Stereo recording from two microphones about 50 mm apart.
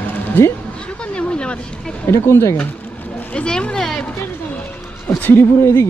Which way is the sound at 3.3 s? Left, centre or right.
Centre.